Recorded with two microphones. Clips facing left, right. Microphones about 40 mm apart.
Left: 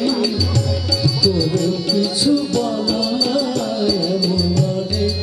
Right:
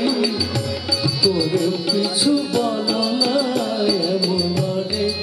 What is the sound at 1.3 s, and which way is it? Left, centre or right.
Music, centre.